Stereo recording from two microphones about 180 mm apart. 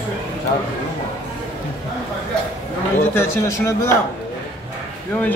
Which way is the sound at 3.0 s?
15° left (ahead or behind).